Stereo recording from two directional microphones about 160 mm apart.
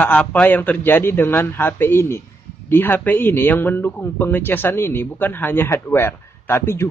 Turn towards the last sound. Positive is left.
turn(degrees=15)  # may be behind; listen again after turning